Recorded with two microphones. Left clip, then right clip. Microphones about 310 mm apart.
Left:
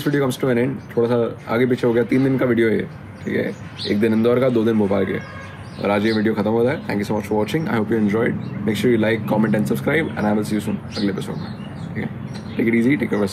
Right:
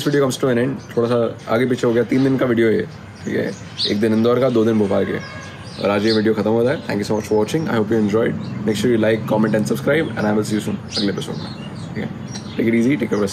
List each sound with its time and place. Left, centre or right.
0.0 s speech: centre
12.5 s speech: centre